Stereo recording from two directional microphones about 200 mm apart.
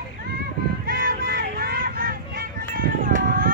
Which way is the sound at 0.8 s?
45° right (ahead or behind).